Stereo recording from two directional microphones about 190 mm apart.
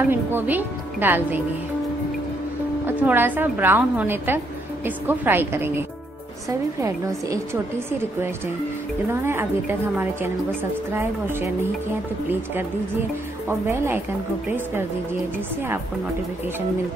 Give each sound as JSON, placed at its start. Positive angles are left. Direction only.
{"t": 0.1, "sound": "a woman's voice", "side_deg": -10}
{"t": 3.0, "sound": "a woman's voice", "side_deg": -10}
{"t": 9.1, "sound": "a woman's voice", "side_deg": -15}
{"t": 13.5, "sound": "a woman's voice", "side_deg": -10}